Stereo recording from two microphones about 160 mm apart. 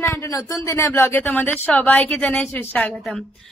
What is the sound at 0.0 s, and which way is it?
A woman's voice, 20° left (ahead or behind).